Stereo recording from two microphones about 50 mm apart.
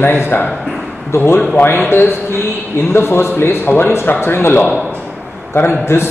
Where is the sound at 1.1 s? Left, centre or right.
Left.